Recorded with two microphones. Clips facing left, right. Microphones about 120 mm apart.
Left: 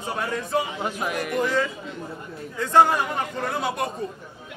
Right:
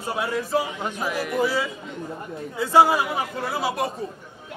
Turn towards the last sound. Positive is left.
turn(degrees=0)  # may be behind; listen again after turning